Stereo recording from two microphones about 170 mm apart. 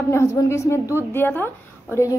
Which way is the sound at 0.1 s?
15° left (ahead or behind).